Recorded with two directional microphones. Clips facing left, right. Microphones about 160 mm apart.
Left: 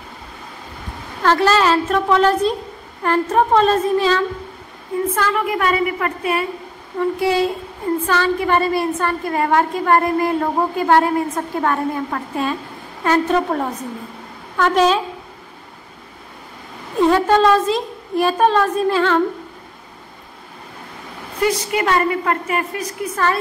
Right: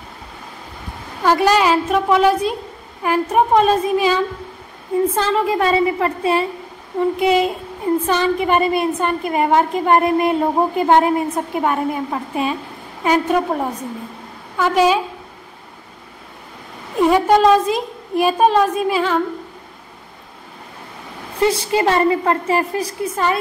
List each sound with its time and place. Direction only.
1.2 s a woman's voice: 15° right (ahead or behind)
5.1 s a woman's voice: 25° right (ahead or behind); by 15.0 s 5° right (ahead or behind)
17.0 s a woman's voice: 15° right (ahead or behind)
21.4 s a woman's voice: 25° right (ahead or behind)